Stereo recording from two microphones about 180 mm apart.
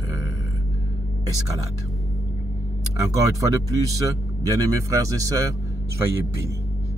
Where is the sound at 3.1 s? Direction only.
20° right (ahead or behind).